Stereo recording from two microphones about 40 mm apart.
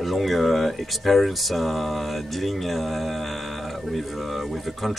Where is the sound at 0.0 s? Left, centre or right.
Centre.